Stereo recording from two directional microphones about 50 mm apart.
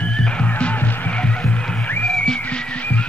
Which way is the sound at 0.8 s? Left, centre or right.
Left.